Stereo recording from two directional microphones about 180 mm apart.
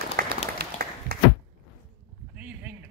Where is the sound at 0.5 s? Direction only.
60° right (ahead or behind).